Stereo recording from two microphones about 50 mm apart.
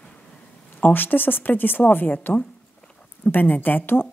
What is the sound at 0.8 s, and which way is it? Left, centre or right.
Speech, left.